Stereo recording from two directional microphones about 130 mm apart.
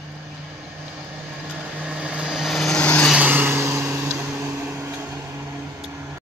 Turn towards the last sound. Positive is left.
turn(degrees=-25)  # may be behind; listen again after turning